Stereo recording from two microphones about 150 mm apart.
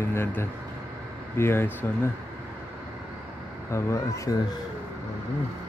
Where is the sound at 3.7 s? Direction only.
20° left (ahead or behind).